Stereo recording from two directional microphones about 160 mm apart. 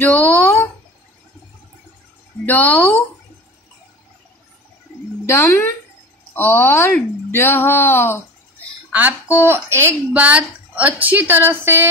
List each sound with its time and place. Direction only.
0.1 s a sound: 10° left (ahead or behind)
2.4 s speech: 10° left (ahead or behind)
5.2 s speech: 15° left (ahead or behind)
8.9 s speech: 10° right (ahead or behind)